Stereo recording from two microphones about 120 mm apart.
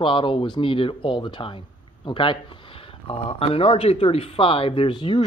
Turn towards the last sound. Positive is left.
turn(degrees=40)  # may be behind; listen again after turning